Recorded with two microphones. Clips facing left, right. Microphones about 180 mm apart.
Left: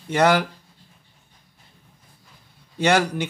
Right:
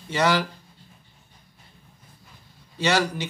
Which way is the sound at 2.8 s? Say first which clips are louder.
Left 4 dB; 55° left (ahead or behind).